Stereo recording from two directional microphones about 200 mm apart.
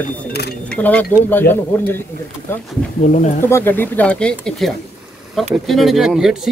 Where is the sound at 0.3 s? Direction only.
55° left (ahead or behind).